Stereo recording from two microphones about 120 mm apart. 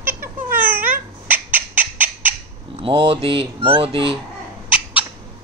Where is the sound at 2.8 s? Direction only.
50° right (ahead or behind).